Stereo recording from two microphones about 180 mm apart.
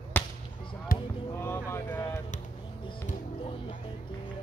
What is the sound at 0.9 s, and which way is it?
Basketball bounce, 50° left (ahead or behind).